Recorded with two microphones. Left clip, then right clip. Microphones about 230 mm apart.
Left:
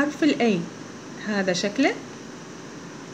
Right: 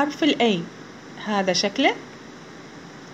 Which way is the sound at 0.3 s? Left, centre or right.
Right.